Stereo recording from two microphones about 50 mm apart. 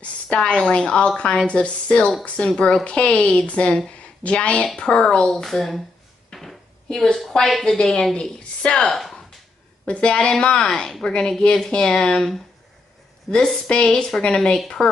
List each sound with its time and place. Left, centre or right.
0.0 s a woman's voice: left; by 5.8 s centre
6.3 s a sound: centre
7.2 s a woman's voice: centre
13.3 s a woman's voice: centre